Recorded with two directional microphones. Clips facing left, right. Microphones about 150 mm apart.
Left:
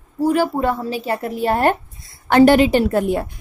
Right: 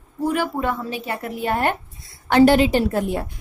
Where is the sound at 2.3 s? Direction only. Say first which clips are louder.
Left 3 dB; 55° left (ahead or behind).